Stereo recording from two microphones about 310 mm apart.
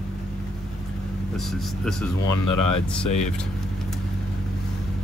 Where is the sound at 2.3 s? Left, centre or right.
Left.